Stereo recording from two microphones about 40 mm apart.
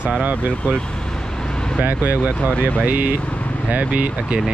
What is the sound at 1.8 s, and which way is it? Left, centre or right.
Speech, right.